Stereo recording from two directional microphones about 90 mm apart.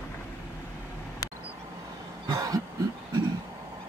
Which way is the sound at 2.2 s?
40° right (ahead or behind).